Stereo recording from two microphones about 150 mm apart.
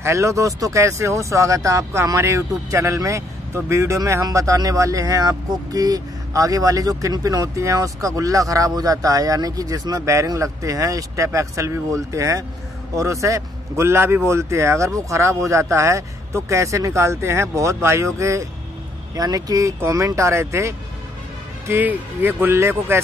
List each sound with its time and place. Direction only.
0.0 s speech: 20° right (ahead or behind)